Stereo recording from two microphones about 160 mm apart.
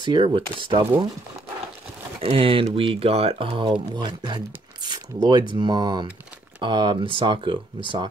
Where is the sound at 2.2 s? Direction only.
35° right (ahead or behind).